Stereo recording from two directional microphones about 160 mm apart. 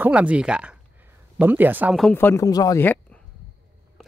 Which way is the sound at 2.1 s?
15° left (ahead or behind).